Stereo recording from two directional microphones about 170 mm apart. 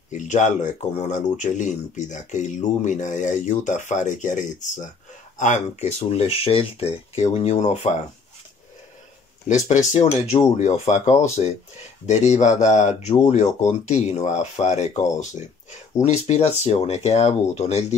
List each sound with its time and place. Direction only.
0.1 s speech: 45° left (ahead or behind)
10.2 s speech: 40° left (ahead or behind)